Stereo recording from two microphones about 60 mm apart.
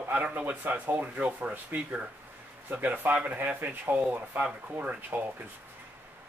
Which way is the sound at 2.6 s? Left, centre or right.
Right.